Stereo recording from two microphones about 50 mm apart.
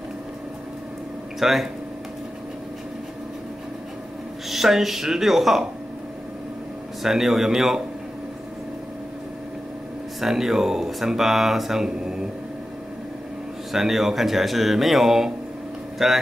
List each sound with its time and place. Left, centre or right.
1.4 s speech: centre
4.5 s speech: centre
7.0 s speech: centre
10.2 s speech: centre
13.7 s speech: centre